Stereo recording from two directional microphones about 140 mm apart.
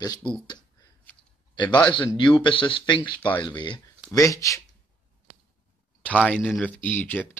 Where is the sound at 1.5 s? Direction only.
35° left (ahead or behind).